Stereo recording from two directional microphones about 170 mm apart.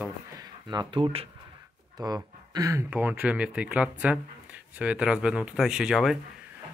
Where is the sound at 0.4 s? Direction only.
25° right (ahead or behind); by 6.1 s 5° right (ahead or behind).